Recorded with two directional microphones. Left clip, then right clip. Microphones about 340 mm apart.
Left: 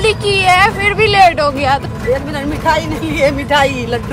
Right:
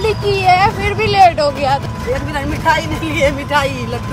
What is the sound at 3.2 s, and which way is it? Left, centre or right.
Speech, centre.